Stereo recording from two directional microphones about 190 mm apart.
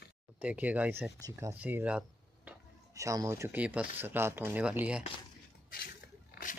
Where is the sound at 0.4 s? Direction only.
10° right (ahead or behind).